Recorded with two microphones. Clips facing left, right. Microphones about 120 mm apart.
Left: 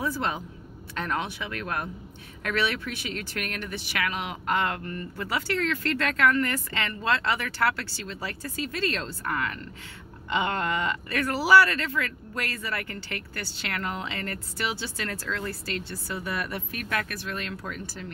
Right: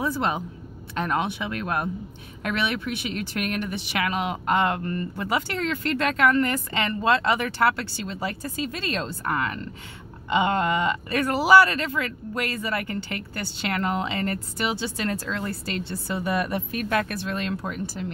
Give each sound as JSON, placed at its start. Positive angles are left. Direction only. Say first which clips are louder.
{"t": 0.0, "sound": "speech", "louder": "right 4 dB", "side_deg": -20}